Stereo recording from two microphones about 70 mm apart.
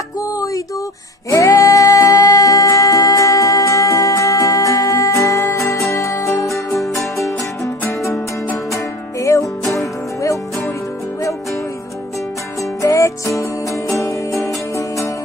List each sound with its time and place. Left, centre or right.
0.2 s a sound: left
1.3 s music: left
8.7 s music: left
12.8 s music: left